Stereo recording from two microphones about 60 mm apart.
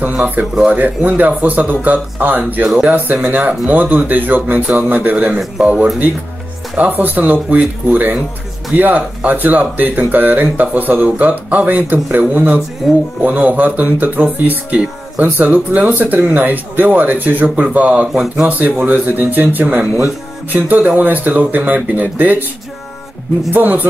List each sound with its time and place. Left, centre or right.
0.0 s speech: right
2.6 s speech: centre
2.9 s speech: right
5.1 s speech: centre
6.8 s speech: right
18.1 s speech: centre
18.9 s speech: right
23.5 s a man's voice: right